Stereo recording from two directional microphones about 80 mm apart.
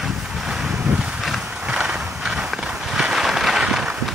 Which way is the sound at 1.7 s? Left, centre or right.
Centre.